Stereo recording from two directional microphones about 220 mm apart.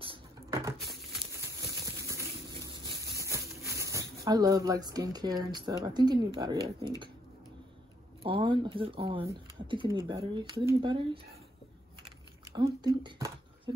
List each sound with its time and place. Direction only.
0.0 s a sound: 20° right (ahead or behind)
3.2 s speech: 15° right (ahead or behind)
8.2 s speech: 25° right (ahead or behind)
12.4 s speech: 15° right (ahead or behind)